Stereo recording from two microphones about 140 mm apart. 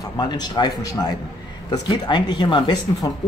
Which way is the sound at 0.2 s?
30° left (ahead or behind).